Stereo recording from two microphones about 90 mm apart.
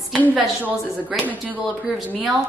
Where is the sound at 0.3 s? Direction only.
15° right (ahead or behind).